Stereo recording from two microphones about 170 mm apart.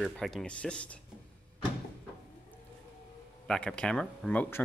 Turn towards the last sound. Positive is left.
turn(degrees=10)  # may be behind; listen again after turning